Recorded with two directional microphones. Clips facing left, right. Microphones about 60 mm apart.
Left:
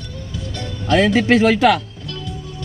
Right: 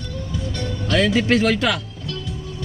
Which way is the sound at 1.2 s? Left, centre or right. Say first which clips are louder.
Left 5 dB; left.